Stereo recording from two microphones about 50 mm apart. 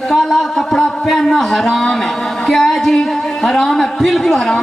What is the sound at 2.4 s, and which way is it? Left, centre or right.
Speech, centre.